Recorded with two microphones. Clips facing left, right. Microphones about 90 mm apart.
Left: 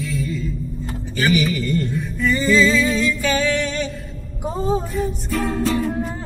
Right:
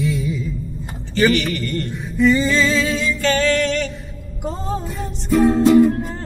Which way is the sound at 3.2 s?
15° left (ahead or behind).